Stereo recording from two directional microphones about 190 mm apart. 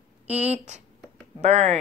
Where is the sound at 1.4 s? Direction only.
35° right (ahead or behind).